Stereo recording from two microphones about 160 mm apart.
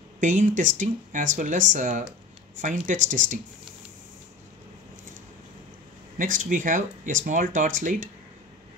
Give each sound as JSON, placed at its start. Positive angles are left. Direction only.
{"t": 0.2, "sound": "speech", "side_deg": -50}
{"t": 6.1, "sound": "speech", "side_deg": -55}